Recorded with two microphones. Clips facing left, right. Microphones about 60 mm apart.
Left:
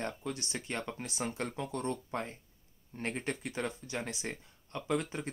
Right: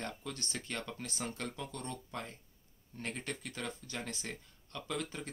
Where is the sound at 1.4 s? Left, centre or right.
Left; by 4.3 s centre.